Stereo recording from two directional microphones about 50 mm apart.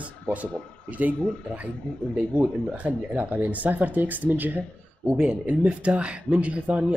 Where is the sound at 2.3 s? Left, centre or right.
Right.